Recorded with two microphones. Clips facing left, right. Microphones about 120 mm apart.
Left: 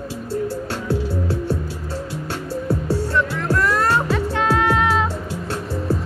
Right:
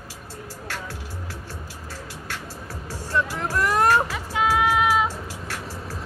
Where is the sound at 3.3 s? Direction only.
15° right (ahead or behind).